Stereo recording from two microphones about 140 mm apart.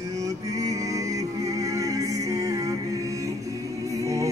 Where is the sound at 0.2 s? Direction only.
25° right (ahead or behind).